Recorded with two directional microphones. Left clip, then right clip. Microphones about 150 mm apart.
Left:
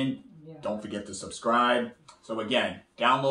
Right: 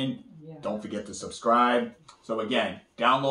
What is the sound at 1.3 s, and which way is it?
Speech, 10° left (ahead or behind).